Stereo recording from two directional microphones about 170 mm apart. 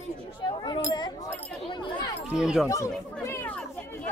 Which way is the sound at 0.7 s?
25° left (ahead or behind).